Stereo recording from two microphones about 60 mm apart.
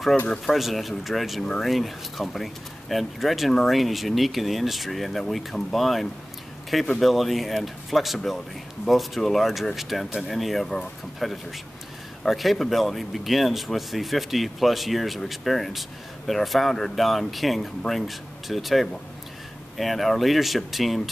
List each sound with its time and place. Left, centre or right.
0.3 s speech: centre